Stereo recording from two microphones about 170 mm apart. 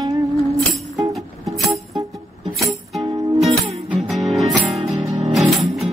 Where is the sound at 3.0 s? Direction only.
25° right (ahead or behind).